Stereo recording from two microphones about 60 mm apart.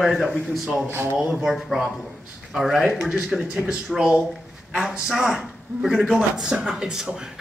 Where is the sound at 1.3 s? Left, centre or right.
Centre.